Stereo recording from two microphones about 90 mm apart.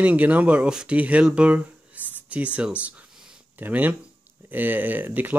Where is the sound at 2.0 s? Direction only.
20° right (ahead or behind).